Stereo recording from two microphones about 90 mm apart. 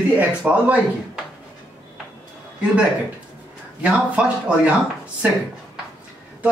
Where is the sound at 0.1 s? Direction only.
15° right (ahead or behind).